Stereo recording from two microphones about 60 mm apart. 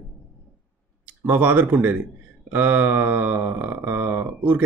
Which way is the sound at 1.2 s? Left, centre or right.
Right.